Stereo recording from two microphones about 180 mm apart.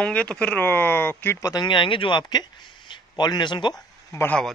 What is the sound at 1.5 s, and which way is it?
Speech, 25° left (ahead or behind).